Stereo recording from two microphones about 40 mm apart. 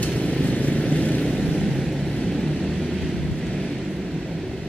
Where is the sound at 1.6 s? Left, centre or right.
Centre.